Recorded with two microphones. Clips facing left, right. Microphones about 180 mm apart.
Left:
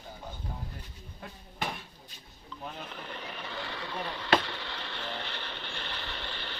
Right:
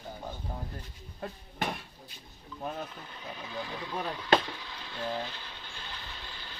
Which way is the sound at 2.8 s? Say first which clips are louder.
Left 2 dB; 75° left (ahead or behind).